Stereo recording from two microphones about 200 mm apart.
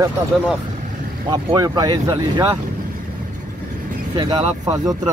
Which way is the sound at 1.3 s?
20° right (ahead or behind).